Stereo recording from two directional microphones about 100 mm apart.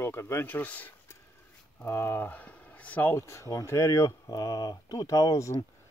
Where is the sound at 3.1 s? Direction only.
30° left (ahead or behind).